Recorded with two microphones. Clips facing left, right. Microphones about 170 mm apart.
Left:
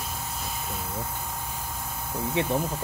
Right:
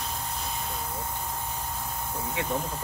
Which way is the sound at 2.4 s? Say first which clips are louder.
Left 5 dB; 25° left (ahead or behind).